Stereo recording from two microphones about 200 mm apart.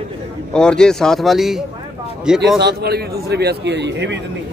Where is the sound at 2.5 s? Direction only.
55° right (ahead or behind).